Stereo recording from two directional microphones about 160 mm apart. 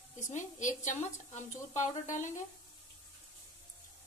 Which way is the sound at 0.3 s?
50° left (ahead or behind).